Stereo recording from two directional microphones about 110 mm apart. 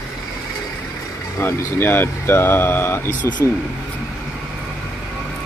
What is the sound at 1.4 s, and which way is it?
Speech, 20° left (ahead or behind).